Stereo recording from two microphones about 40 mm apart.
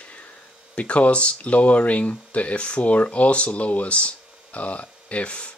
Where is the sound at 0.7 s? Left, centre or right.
Left.